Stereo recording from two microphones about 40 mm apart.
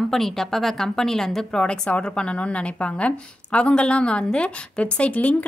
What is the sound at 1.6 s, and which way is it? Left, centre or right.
Speech, left.